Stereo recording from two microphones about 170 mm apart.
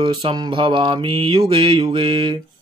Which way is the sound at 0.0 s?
30° right (ahead or behind).